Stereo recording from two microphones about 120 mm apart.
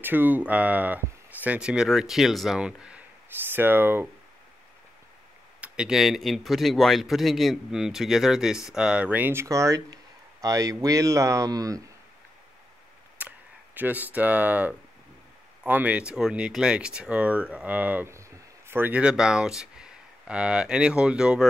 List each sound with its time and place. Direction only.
0.0 s speech: 15° right (ahead or behind)
5.6 s speech: 5° right (ahead or behind); by 11.8 s 30° right (ahead or behind)
13.2 s a sound: 15° right (ahead or behind)
13.7 s speech: 15° right (ahead or behind)